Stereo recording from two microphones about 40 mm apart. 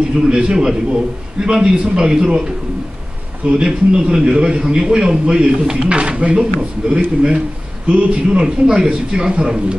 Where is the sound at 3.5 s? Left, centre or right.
Right.